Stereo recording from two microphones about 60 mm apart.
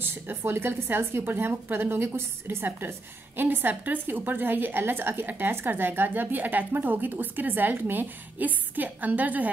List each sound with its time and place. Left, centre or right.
0.5 s a woman's voice: right